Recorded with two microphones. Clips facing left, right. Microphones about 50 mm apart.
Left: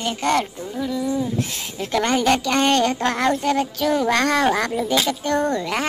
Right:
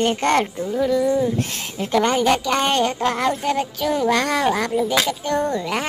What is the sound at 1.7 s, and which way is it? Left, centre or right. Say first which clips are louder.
Speech: right 2 dB; right.